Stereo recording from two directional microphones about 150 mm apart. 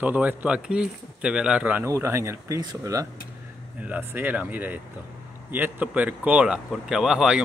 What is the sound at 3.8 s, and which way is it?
Speech, 10° right (ahead or behind).